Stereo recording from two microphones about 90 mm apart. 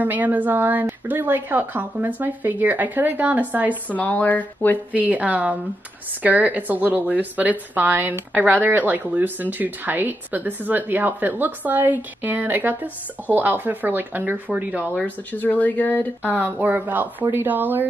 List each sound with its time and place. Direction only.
0.0 s a woman's voice: 20° right (ahead or behind)
3.9 s speech: 15° left (ahead or behind)
4.9 s a woman's voice: 15° right (ahead or behind)
15.0 s speech: 20° left (ahead or behind)
16.3 s a woman's voice: 20° right (ahead or behind)